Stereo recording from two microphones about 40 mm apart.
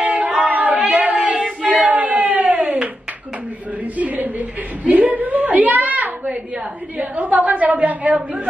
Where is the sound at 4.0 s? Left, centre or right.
Right.